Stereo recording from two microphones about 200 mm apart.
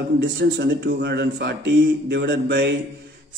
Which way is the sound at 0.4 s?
60° right (ahead or behind).